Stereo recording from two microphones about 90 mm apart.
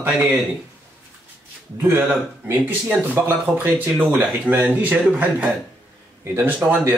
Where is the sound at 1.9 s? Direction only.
20° right (ahead or behind).